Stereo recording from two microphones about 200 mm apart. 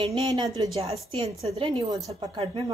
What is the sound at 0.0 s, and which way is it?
Speech, 25° right (ahead or behind).